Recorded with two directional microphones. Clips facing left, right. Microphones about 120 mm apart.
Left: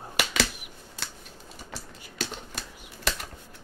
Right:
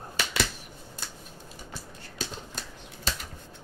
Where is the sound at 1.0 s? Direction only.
80° left.